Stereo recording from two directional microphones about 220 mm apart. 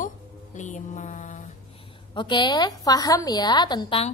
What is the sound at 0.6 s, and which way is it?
Speech, 35° left (ahead or behind).